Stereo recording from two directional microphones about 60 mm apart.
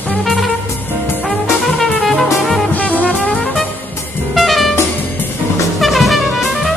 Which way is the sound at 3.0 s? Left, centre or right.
Left.